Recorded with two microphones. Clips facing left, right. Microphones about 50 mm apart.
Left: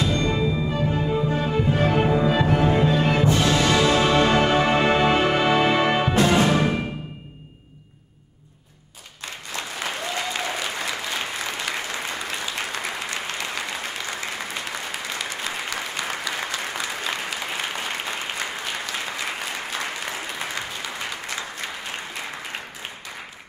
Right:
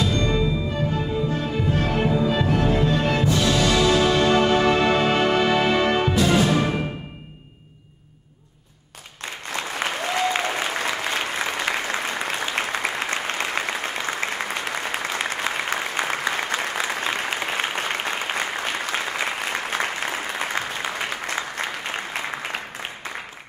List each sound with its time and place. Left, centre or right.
0.0 s music: left
6.1 s music: left
9.5 s applause: right